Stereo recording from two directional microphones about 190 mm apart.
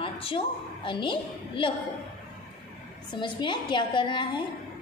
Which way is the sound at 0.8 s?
25° left (ahead or behind).